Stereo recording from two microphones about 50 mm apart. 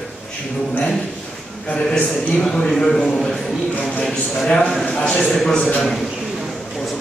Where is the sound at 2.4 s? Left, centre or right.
Centre.